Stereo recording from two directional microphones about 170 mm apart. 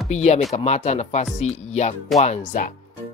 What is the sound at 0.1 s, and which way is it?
Speech, 40° left (ahead or behind).